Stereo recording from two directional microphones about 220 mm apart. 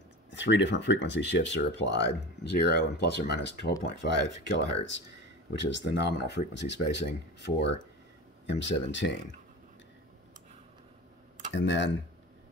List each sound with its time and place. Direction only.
0.3 s speech: 55° left (ahead or behind)
11.5 s speech: 55° left (ahead or behind)